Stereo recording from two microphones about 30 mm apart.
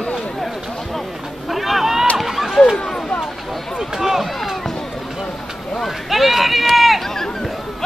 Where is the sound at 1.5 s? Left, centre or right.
Centre.